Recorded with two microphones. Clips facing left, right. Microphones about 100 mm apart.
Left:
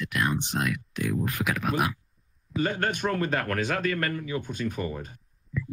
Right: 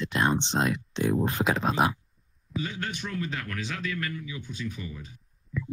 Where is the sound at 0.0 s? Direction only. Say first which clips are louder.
Right 2 dB; 30° right (ahead or behind).